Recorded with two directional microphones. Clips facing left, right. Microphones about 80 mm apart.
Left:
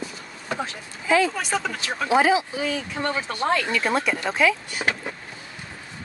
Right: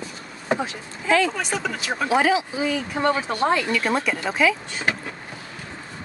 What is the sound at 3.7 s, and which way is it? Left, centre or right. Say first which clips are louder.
Speech: even; centre.